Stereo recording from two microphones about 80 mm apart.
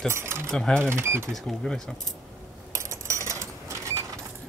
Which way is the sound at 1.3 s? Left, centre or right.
Centre.